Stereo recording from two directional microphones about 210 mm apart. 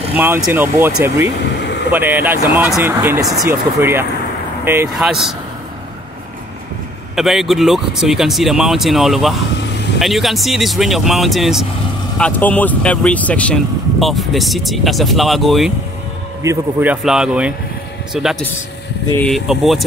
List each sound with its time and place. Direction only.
0.1 s speech: 10° right (ahead or behind)
7.2 s speech: centre (ahead or behind)